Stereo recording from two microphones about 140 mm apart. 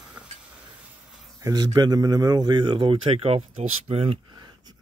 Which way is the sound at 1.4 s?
25° right (ahead or behind).